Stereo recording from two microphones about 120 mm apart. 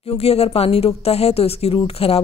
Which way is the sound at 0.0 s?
60° left (ahead or behind).